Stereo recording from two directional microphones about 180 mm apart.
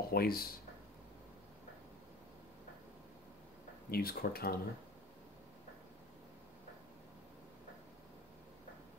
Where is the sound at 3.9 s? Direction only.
55° left (ahead or behind).